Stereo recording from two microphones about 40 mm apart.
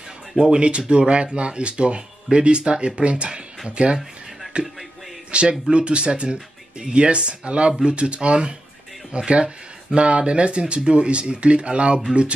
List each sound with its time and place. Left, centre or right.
0.4 s speech: right